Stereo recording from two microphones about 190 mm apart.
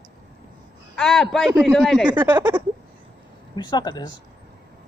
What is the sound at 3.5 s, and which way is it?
Speech, 20° left (ahead or behind).